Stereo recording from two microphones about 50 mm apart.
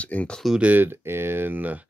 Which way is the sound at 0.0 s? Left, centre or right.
Left.